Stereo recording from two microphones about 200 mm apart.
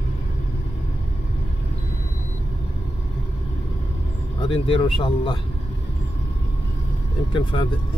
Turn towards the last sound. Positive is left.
turn(degrees=25)  # may be behind; listen again after turning